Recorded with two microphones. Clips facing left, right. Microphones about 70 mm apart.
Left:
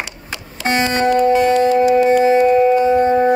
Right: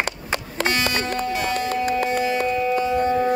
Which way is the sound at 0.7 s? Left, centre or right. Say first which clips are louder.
Left 9 dB; left.